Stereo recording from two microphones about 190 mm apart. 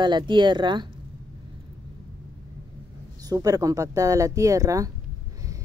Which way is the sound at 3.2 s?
20° right (ahead or behind).